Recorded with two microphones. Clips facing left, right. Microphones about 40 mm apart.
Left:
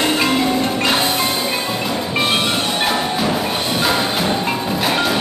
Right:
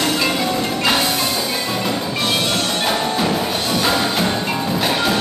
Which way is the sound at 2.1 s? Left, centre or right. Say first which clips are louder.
Left 4 dB; left.